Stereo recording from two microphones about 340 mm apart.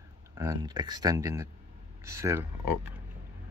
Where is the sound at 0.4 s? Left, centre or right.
Centre.